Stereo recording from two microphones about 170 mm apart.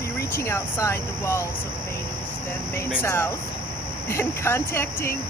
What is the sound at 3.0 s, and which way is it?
Speech, 15° left (ahead or behind).